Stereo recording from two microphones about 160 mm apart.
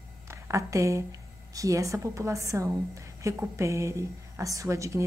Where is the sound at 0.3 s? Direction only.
20° right (ahead or behind).